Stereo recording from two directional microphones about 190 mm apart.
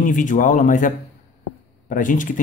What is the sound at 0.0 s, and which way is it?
A man's voice, 45° left (ahead or behind).